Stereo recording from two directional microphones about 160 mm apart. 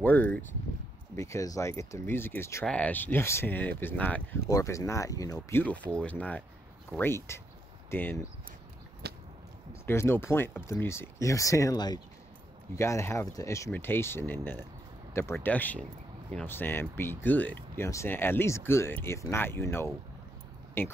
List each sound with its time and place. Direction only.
0.0 s speech: 10° left (ahead or behind)
4.5 s speech: 20° left (ahead or behind)
9.0 s a sound: 90° right
9.8 s speech: 15° left (ahead or behind)